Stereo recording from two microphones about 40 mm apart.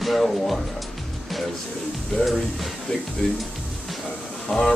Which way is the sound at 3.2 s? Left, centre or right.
Left.